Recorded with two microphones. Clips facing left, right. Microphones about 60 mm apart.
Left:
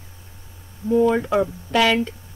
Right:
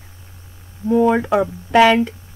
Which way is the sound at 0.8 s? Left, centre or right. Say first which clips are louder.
Right 3 dB; right.